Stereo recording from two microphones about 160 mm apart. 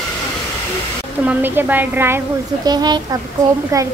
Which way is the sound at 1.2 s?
10° right (ahead or behind).